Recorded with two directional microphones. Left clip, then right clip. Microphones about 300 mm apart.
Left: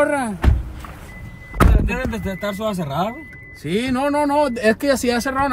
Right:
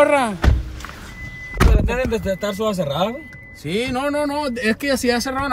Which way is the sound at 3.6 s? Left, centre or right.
Centre.